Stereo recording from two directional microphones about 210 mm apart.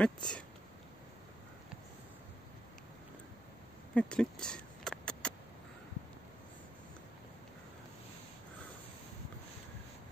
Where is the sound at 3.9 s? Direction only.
5° left (ahead or behind).